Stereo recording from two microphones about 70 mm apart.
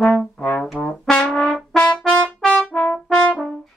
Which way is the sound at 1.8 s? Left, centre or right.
Centre.